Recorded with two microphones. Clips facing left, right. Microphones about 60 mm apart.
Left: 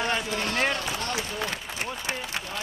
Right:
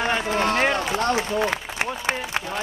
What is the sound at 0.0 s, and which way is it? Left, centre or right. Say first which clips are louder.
A man's voice: right 6 dB; right.